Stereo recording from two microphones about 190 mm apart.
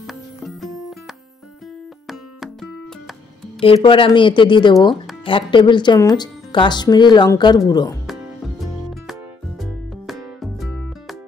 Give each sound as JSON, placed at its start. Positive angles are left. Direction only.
{"t": 0.0, "sound": "music", "side_deg": 0}
{"t": 2.0, "sound": "music", "side_deg": 0}
{"t": 3.6, "sound": "speech", "side_deg": 30}
{"t": 9.6, "sound": "music", "side_deg": 0}